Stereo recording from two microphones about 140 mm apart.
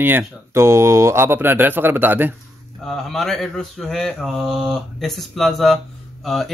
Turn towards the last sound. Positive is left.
turn(degrees=0)  # may be behind; listen again after turning